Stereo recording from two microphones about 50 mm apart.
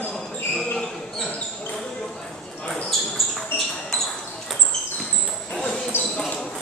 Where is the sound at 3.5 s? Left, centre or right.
Left.